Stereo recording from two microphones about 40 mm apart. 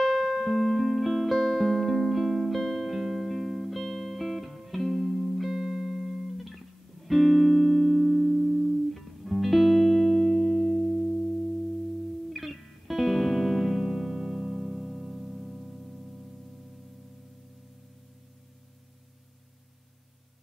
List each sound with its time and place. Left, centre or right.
0.0 s music: centre
6.3 s music: centre
8.0 s music: centre